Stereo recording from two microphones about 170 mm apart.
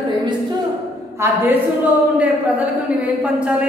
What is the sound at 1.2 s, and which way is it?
Speech, 15° right (ahead or behind).